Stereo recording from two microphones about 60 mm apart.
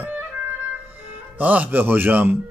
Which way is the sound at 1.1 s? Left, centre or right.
Right.